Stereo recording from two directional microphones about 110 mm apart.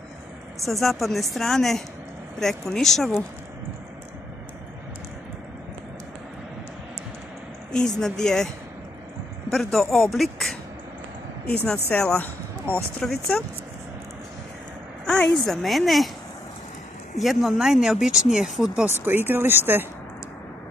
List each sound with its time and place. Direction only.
0.7 s speech: centre (ahead or behind)
7.7 s speech: 5° left (ahead or behind)
9.5 s speech: 5° left (ahead or behind)
11.4 s speech: 15° left (ahead or behind)
15.0 s speech: 5° left (ahead or behind)
17.2 s speech: centre (ahead or behind)
18.9 s speech: 20° right (ahead or behind)